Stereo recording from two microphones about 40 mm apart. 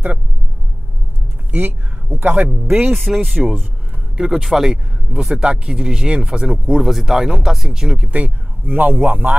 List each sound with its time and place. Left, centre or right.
1.5 s speech: right
2.9 s speech: centre
3.4 s speech: centre
6.7 s speech: centre
8.1 s speech: right